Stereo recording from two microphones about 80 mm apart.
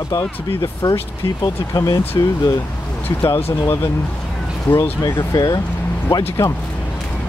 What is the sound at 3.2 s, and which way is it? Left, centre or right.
Speech, left.